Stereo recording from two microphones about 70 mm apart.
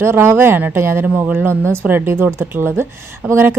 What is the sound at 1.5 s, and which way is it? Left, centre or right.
Speech, left.